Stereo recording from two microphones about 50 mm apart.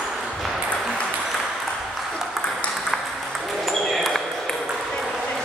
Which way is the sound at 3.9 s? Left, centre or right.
Centre.